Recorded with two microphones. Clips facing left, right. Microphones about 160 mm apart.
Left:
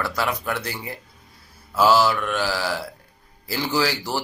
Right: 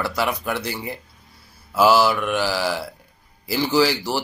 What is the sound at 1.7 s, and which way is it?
Speech, 10° right (ahead or behind).